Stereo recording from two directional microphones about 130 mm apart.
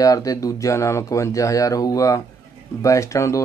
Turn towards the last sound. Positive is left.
turn(degrees=25)  # may be behind; listen again after turning